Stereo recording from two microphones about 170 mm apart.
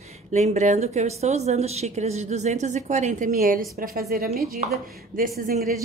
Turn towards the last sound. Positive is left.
turn(degrees=-60)  # may be behind; listen again after turning